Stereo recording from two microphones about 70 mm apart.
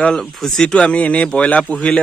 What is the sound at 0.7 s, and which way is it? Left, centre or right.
A man's voice, centre.